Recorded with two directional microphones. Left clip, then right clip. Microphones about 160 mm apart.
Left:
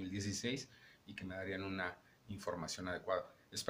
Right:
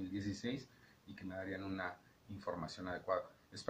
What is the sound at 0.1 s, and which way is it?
Speech, 30° left (ahead or behind).